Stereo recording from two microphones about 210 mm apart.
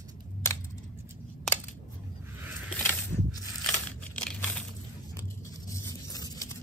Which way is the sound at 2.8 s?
10° left (ahead or behind).